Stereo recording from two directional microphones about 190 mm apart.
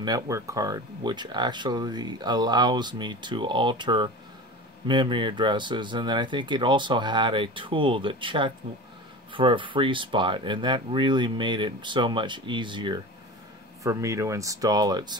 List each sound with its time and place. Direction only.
0.0 s speech: 20° right (ahead or behind)